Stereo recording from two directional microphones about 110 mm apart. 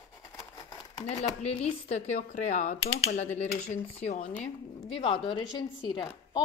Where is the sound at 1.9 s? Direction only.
90° left.